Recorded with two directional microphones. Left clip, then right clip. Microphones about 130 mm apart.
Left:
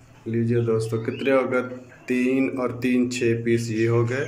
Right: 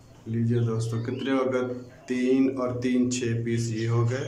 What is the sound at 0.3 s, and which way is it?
Speech, 15° left (ahead or behind).